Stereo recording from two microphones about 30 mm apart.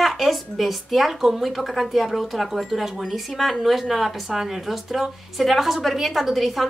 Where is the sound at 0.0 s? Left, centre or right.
Centre.